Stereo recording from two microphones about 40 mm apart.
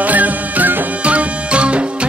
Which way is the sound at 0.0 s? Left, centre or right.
Right.